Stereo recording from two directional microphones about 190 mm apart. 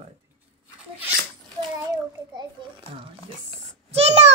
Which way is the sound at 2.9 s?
30° right (ahead or behind).